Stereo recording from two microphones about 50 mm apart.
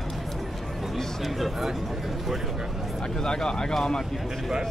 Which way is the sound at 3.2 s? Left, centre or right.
Centre.